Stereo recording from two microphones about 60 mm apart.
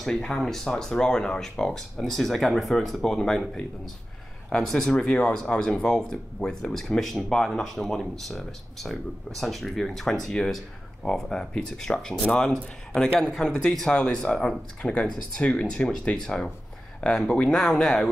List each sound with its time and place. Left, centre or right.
0.0 s speech: centre